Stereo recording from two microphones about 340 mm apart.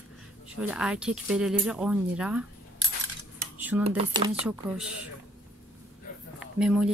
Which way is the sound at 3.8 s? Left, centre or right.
Centre.